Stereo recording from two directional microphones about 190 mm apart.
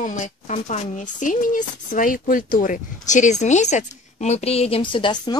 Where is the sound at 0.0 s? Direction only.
40° left (ahead or behind).